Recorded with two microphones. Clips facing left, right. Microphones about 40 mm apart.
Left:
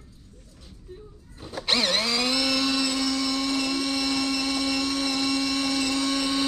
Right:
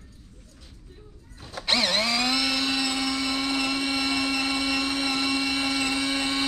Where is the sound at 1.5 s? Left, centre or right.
Centre.